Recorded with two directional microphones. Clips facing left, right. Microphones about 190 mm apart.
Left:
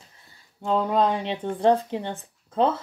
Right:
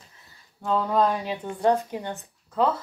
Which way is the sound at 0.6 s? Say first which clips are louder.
Left 1 dB; 25° left (ahead or behind).